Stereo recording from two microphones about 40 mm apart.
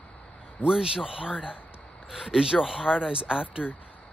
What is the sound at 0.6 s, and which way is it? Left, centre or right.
Speech, centre.